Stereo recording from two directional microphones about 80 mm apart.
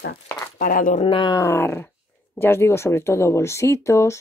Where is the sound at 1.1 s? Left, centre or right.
Left.